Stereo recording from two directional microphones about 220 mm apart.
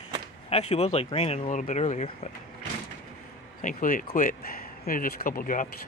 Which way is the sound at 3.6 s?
35° left (ahead or behind).